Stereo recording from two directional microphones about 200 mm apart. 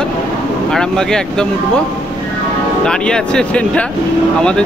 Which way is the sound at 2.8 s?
5° left (ahead or behind).